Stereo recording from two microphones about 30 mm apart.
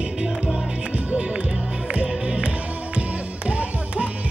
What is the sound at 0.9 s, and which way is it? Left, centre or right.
Music, right.